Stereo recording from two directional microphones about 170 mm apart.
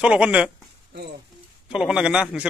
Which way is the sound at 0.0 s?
5° right (ahead or behind).